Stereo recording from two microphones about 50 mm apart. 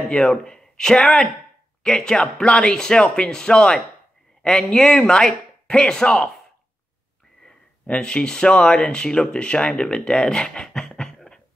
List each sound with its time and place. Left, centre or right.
0.3 s speech: centre
7.8 s speech: left
10.9 s a sound: centre